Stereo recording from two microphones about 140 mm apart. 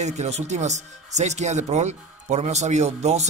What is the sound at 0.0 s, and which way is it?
Speech, 55° right (ahead or behind).